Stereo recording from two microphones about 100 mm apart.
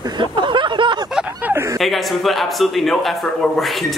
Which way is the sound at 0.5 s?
50° right (ahead or behind).